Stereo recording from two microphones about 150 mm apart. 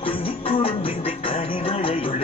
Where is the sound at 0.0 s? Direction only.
40° left (ahead or behind).